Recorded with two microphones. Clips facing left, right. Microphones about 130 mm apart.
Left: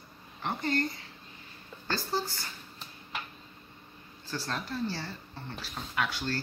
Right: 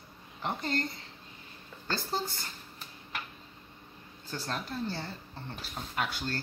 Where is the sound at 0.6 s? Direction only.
30° right (ahead or behind).